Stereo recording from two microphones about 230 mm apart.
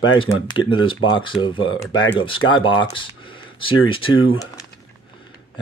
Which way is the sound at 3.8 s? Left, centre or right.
Left.